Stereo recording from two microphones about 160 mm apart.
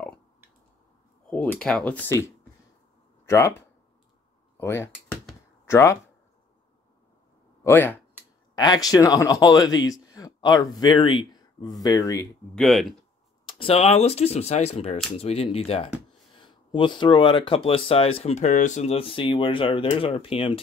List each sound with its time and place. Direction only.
1.6 s speech: 5° left (ahead or behind)
7.6 s speech: 10° left (ahead or behind)
8.5 s speech: 25° left (ahead or behind)
12.5 s speech: centre (ahead or behind)
13.5 s speech: 35° left (ahead or behind)